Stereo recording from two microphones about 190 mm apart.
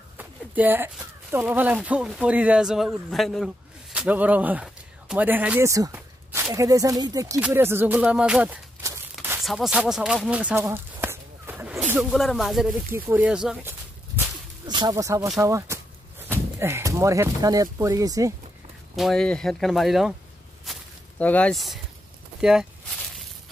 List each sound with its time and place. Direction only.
0.2 s speech: 10° right (ahead or behind)
9.4 s a sound: centre (ahead or behind)
11.9 s speech: centre (ahead or behind)
14.7 s speech: 20° right (ahead or behind)
18.9 s speech: centre (ahead or behind)
20.7 s walk: centre (ahead or behind)
21.2 s speech: 5° left (ahead or behind)